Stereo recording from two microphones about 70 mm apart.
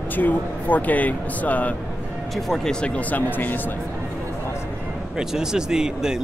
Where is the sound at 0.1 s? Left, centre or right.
Left.